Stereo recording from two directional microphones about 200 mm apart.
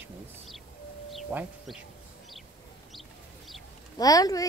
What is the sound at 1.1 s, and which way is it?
Speech, centre (ahead or behind).